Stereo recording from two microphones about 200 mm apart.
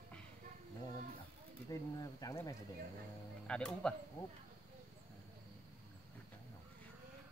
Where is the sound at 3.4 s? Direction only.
5° left (ahead or behind).